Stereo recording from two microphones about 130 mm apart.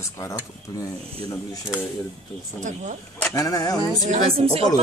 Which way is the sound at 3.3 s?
25° left (ahead or behind).